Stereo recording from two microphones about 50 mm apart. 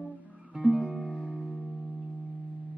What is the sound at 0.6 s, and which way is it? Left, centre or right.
Music, right.